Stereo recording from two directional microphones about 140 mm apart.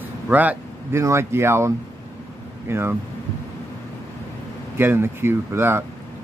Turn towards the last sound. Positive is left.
turn(degrees=-15)  # may be behind; listen again after turning